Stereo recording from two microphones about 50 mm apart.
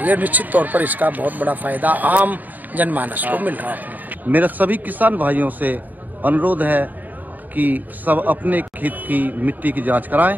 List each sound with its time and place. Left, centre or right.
0.0 s speech: right